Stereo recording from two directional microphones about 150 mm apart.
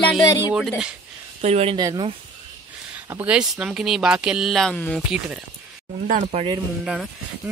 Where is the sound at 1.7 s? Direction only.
30° right (ahead or behind).